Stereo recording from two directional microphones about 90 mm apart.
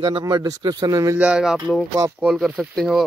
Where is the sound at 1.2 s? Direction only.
10° right (ahead or behind).